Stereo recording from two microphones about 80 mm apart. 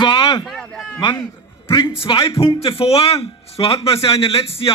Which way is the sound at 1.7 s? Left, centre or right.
Left.